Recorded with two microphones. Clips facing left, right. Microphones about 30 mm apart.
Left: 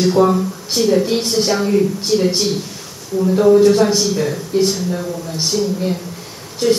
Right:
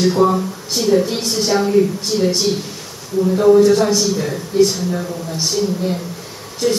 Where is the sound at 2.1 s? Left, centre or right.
Centre.